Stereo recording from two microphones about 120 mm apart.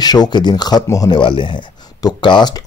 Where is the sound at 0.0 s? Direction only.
35° left (ahead or behind).